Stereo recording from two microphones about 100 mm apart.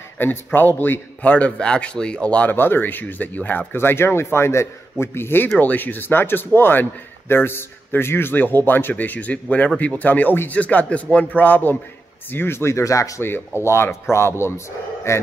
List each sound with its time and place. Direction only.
0.2 s a man's voice: 20° left (ahead or behind)